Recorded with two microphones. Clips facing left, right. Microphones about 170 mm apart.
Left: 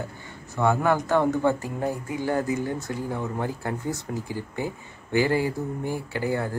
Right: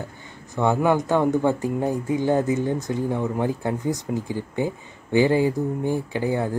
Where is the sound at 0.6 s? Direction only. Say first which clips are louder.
Right 2 dB; 15° right (ahead or behind).